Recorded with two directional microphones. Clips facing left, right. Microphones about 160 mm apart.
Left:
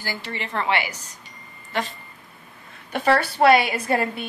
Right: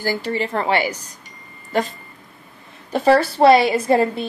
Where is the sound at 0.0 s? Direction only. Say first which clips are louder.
Right 9 dB; 40° right (ahead or behind).